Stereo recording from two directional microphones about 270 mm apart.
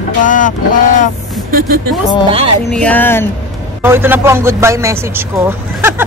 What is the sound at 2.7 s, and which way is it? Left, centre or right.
Speech, centre.